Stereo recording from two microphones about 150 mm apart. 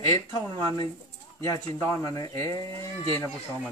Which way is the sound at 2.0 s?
25° left (ahead or behind).